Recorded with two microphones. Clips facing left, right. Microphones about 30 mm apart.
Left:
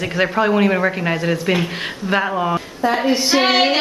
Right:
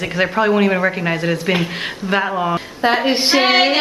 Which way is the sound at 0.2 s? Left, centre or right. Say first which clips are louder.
Right 1 dB; centre.